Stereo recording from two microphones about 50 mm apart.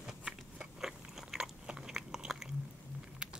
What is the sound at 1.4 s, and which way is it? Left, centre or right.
Biting, centre.